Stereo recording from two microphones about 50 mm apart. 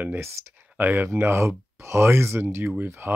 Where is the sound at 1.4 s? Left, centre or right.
Right.